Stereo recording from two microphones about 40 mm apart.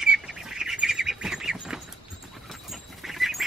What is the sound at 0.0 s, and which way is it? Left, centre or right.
Bird, centre.